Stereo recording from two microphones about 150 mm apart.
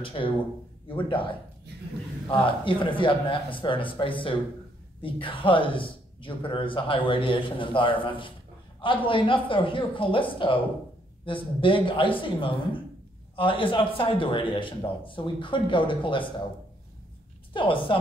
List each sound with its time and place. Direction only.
0.0 s speech: 35° left (ahead or behind)
17.6 s speech: 35° left (ahead or behind)